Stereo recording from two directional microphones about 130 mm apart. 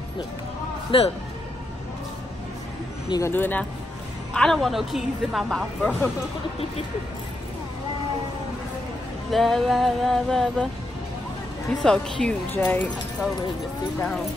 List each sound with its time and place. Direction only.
0.9 s speech: 40° left (ahead or behind)
3.1 s speech: 20° left (ahead or behind)
4.3 s speech: 5° left (ahead or behind)
9.3 s speech: centre (ahead or behind)
11.8 s speech: 5° left (ahead or behind)
13.9 s speech: 10° left (ahead or behind)